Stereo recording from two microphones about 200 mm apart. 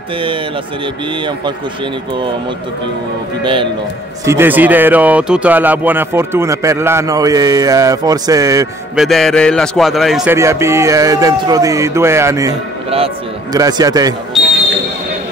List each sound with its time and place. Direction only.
4.3 s speech: 10° right (ahead or behind)
8.9 s a man's voice: centre (ahead or behind)
10.3 s a man's voice: 15° right (ahead or behind)